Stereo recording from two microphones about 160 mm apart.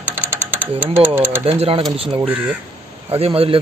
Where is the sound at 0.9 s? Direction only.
10° right (ahead or behind).